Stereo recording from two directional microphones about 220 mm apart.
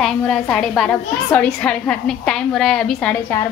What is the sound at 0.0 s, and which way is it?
A woman's voice, centre (ahead or behind).